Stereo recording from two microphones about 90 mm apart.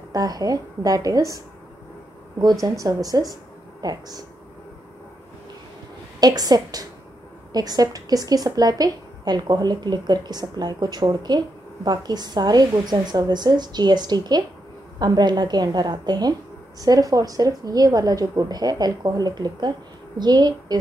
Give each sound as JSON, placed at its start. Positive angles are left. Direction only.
{"t": 0.1, "sound": "a woman's voice", "side_deg": -45}
{"t": 2.6, "sound": "a woman's voice", "side_deg": -40}
{"t": 6.1, "sound": "a woman's voice", "side_deg": -45}